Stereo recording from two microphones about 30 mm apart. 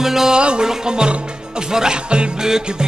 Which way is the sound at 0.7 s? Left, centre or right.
Right.